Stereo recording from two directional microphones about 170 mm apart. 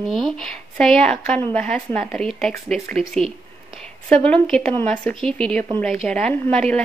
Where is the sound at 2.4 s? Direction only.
5° left (ahead or behind).